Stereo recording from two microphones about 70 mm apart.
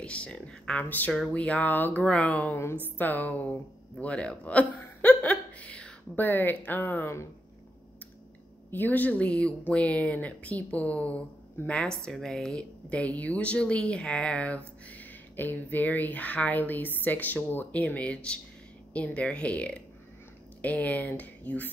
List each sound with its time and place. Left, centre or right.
0.0 s speech: centre
0.8 s speech: left
6.1 s speech: left
8.6 s speech: left